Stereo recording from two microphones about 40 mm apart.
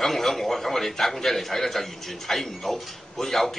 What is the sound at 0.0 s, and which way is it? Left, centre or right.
A man's voice, centre.